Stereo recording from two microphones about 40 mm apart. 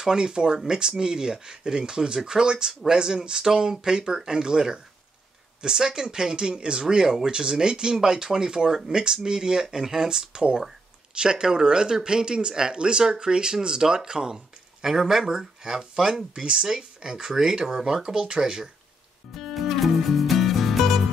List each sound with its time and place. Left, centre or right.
0.0 s speech: centre
19.3 s music: centre